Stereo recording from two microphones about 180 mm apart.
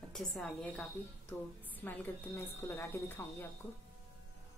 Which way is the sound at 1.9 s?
10° left (ahead or behind).